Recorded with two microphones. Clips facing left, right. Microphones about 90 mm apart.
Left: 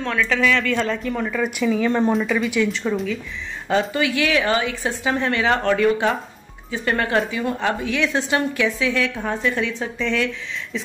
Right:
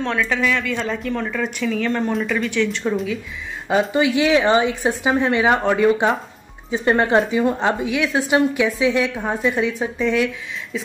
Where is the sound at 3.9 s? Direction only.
20° right (ahead or behind).